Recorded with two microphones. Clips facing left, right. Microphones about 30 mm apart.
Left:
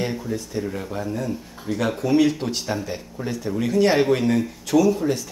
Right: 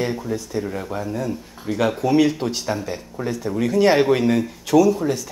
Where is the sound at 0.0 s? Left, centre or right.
Centre.